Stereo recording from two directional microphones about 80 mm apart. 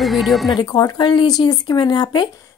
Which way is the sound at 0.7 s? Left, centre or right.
Left.